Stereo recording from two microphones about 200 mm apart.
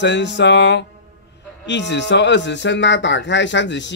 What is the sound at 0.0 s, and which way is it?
Speech, 60° left (ahead or behind).